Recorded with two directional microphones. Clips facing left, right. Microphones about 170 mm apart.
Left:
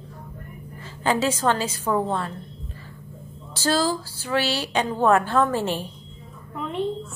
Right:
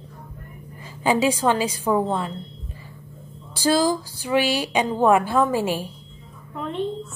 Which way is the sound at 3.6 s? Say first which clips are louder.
Right 3 dB; 15° right (ahead or behind).